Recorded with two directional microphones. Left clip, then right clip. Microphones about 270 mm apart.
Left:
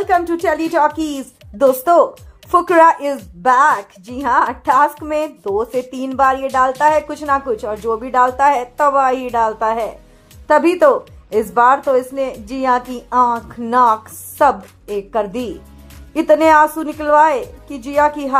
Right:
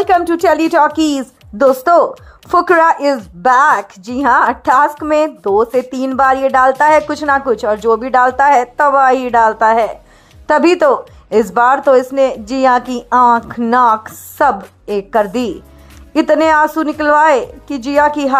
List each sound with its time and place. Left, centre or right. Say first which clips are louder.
0.0 s speech: right 4 dB; right